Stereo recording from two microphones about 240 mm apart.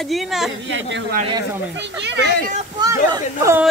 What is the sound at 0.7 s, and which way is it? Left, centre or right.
Speech, right.